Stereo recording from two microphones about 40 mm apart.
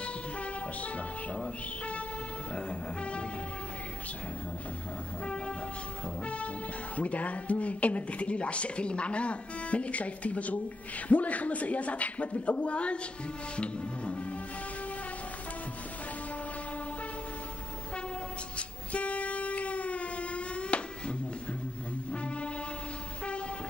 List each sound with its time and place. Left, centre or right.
0.0 s music: left
2.5 s music: left
6.2 s music: left
7.0 s speech: left
13.6 s music: left
18.6 s a sound: left
22.1 s music: left